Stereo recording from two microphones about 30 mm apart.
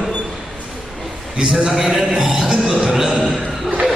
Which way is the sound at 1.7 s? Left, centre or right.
Centre.